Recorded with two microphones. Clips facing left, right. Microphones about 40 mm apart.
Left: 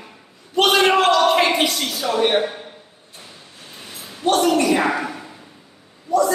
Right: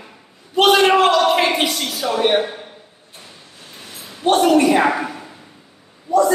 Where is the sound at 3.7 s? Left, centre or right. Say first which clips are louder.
Even; centre.